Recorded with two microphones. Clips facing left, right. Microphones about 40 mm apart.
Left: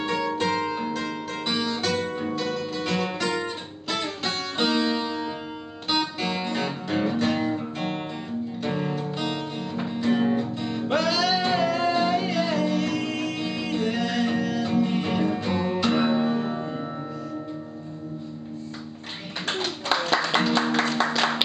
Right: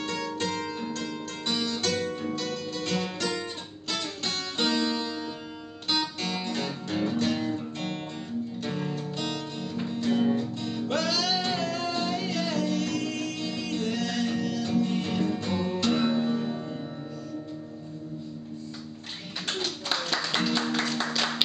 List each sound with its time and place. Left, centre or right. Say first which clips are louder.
0.0 s music: left 6 dB; centre
19.4 s music: left 4 dB; left